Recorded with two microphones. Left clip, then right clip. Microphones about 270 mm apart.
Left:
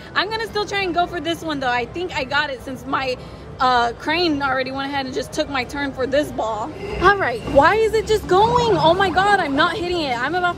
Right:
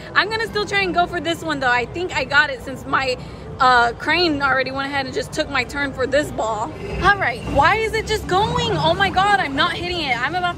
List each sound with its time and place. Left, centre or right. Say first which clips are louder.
0.1 s speech: right 3 dB; centre
7.0 s speech: left 1 dB; left